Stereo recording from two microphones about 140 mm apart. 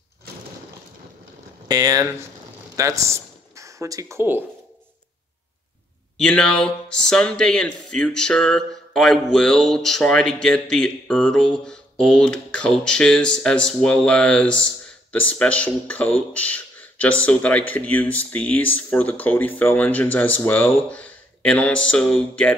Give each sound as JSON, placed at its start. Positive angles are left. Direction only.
{"t": 1.7, "sound": "speech", "side_deg": -25}
{"t": 6.1, "sound": "speech", "side_deg": 5}